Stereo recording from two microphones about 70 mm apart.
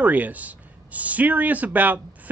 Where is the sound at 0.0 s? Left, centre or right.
Right.